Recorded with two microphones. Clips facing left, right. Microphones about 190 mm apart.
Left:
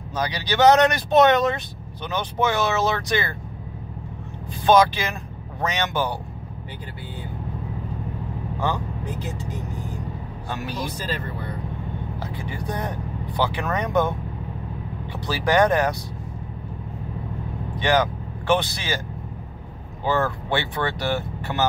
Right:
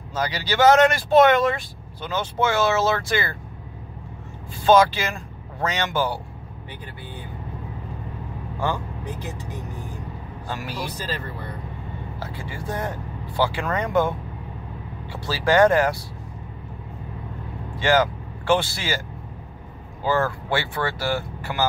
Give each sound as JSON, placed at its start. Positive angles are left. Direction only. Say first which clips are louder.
{"t": 0.1, "sound": "speech", "louder": "even", "side_deg": 15}
{"t": 4.6, "sound": "speech", "louder": "right 1 dB", "side_deg": 15}
{"t": 10.5, "sound": "speech", "louder": "left 1 dB", "side_deg": 20}
{"t": 12.2, "sound": "speech", "louder": "left 2 dB", "side_deg": 15}
{"t": 15.2, "sound": "speech", "louder": "right 2 dB", "side_deg": 15}
{"t": 17.7, "sound": "speech", "louder": "right 1 dB", "side_deg": 15}
{"t": 20.1, "sound": "speech", "louder": "even", "side_deg": 20}